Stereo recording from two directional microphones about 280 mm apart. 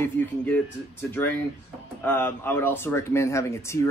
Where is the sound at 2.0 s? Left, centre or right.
Centre.